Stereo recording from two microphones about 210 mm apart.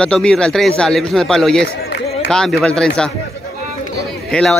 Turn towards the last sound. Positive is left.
turn(degrees=5)  # may be behind; listen again after turning